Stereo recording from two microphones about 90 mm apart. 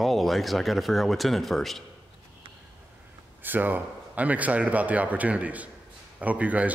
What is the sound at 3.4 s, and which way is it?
A man's voice, 20° right (ahead or behind).